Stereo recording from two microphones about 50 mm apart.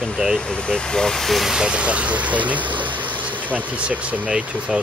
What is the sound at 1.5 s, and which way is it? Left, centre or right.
Speech, centre.